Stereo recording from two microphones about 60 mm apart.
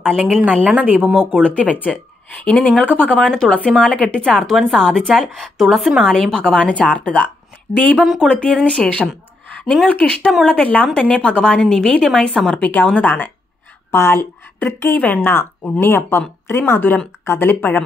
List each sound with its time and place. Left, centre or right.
0.7 s speech: right
1.1 s a woman's voice: centre
1.6 s a woman's voice: left; by 4.7 s centre
4.7 s a woman's voice: centre
8.0 s speech: centre
8.3 s a woman's voice: centre; by 17.8 s left